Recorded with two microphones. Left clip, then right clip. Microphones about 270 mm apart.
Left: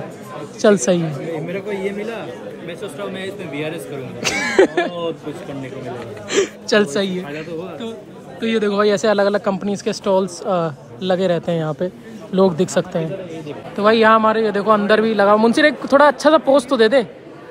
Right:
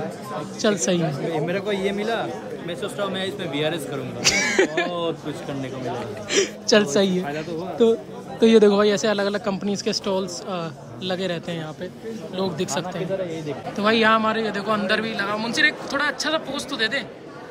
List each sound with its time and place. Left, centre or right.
0.6 s a woman's voice: centre
6.3 s a woman's voice: centre
7.8 s speech: right; by 17.1 s centre